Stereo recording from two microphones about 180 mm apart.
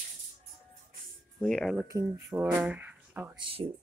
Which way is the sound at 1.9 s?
15° right (ahead or behind).